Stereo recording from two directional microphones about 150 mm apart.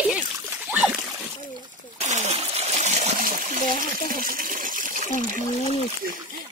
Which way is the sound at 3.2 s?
70° right (ahead or behind).